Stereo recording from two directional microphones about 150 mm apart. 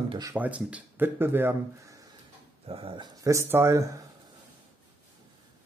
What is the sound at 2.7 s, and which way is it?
Speech, 35° right (ahead or behind).